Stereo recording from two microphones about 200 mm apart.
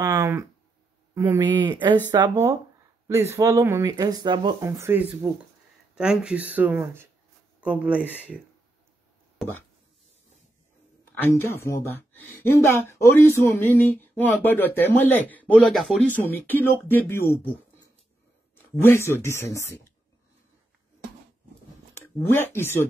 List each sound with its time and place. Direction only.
0.0 s speech: 15° right (ahead or behind)
9.4 s speech: 10° left (ahead or behind)
11.2 s speech: 10° left (ahead or behind)
18.8 s speech: 10° left (ahead or behind)
21.9 s speech: 10° left (ahead or behind)